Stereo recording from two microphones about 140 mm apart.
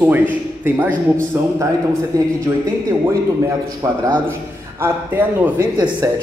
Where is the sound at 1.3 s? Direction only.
15° right (ahead or behind).